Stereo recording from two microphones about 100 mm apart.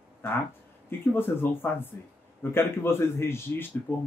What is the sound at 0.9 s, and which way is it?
Speech, 20° left (ahead or behind).